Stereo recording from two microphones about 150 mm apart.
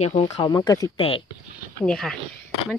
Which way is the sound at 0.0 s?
45° left (ahead or behind).